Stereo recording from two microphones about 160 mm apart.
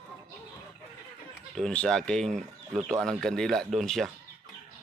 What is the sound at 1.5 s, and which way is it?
Speech, 5° left (ahead or behind).